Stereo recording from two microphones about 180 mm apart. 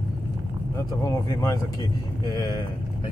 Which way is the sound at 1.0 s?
20° left (ahead or behind).